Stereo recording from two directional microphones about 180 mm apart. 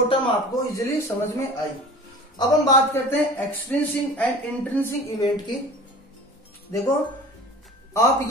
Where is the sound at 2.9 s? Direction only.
10° left (ahead or behind).